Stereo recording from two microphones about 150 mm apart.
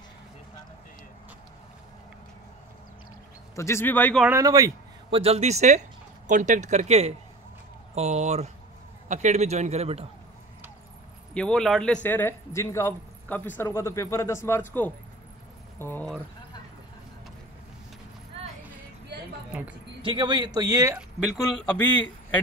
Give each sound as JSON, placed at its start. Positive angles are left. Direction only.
{"t": 3.5, "sound": "a man's voice", "side_deg": 20}
{"t": 4.3, "sound": "a man's voice", "side_deg": -20}
{"t": 5.1, "sound": "speech", "side_deg": -40}
{"t": 11.3, "sound": "a man's voice", "side_deg": 5}
{"t": 20.0, "sound": "a man's voice", "side_deg": -30}
{"t": 20.9, "sound": "a man's voice", "side_deg": -5}